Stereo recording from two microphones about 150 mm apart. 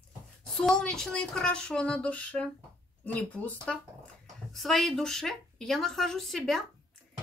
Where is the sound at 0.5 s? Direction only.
5° left (ahead or behind).